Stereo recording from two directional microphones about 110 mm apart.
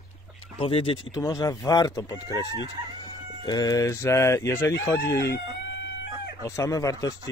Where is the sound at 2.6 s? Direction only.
40° left (ahead or behind).